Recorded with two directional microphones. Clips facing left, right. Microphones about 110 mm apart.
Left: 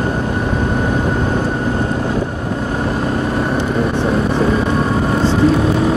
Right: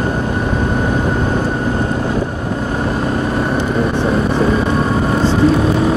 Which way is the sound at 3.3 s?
20° right (ahead or behind).